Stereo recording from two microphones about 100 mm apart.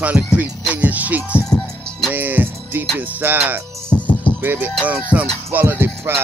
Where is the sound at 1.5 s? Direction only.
5° left (ahead or behind).